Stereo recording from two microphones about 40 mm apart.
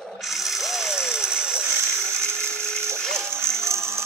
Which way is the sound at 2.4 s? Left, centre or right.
Left.